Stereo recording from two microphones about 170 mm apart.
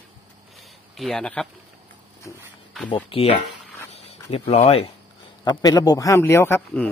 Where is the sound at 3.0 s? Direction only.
35° left (ahead or behind).